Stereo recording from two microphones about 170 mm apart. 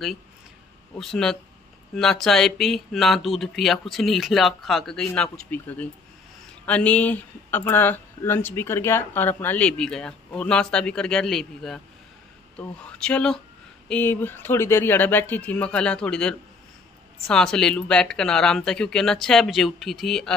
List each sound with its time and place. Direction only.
0.9 s speech: 5° left (ahead or behind)